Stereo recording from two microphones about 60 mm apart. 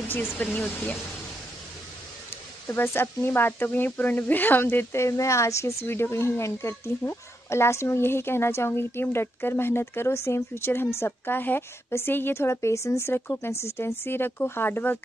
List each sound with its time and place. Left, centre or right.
0.4 s speech: left
2.7 s speech: left
4.9 s a woman's voice: left